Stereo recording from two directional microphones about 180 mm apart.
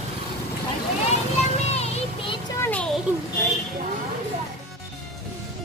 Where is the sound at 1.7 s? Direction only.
35° left (ahead or behind).